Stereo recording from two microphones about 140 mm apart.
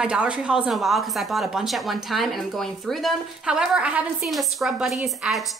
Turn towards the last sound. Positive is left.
turn(degrees=0)  # may be behind; listen again after turning